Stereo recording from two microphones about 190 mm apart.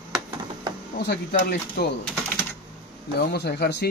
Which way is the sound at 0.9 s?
55° left (ahead or behind).